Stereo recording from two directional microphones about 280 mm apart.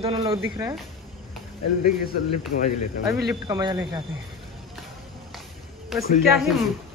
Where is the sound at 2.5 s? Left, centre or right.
Left.